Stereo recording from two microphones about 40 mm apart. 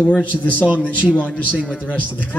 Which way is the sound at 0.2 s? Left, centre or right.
Left.